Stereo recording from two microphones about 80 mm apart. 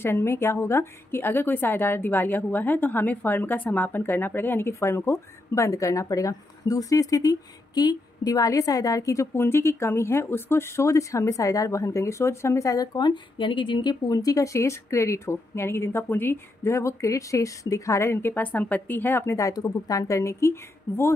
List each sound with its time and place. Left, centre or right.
0.0 s a woman's voice: left
19.3 s a woman's voice: left